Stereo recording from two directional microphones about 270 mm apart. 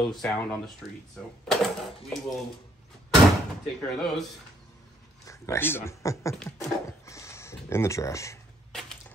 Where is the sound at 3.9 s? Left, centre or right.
Centre.